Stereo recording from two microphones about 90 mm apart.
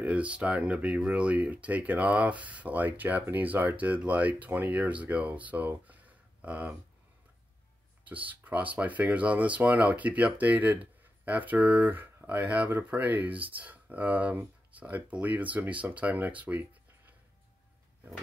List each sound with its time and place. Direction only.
0.0 s speech: 15° right (ahead or behind)
8.0 s speech: 15° right (ahead or behind)